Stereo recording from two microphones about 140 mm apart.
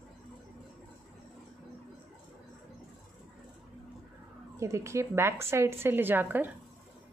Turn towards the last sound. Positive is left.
turn(degrees=-15)  # may be behind; listen again after turning